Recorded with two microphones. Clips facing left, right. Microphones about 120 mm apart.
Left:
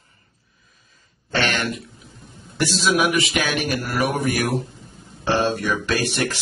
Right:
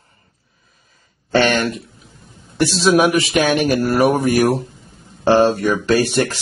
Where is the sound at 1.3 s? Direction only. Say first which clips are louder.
Right 7 dB; 40° right (ahead or behind).